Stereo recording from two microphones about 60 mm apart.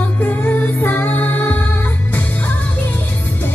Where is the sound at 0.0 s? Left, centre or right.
Left.